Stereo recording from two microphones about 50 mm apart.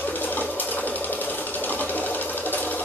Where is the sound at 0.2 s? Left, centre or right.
Left.